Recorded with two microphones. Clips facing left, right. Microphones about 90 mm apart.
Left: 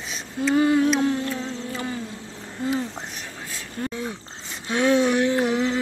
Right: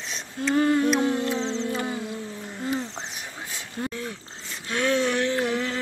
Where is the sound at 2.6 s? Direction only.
5° left (ahead or behind).